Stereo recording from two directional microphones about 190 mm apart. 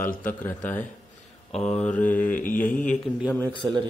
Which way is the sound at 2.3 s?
45° left (ahead or behind).